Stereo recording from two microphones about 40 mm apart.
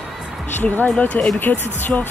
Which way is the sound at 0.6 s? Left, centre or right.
Left.